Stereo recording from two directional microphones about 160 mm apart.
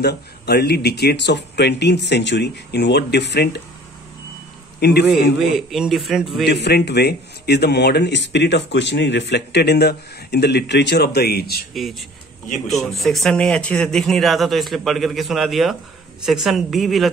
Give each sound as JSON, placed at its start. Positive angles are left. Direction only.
{"t": 0.0, "sound": "speech", "side_deg": 90}
{"t": 4.7, "sound": "a man's voice", "side_deg": 90}
{"t": 5.4, "sound": "speech", "side_deg": 0}
{"t": 6.4, "sound": "speech", "side_deg": 90}
{"t": 11.7, "sound": "speech", "side_deg": 0}